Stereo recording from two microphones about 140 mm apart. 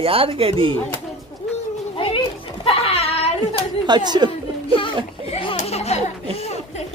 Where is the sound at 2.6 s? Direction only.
45° left (ahead or behind).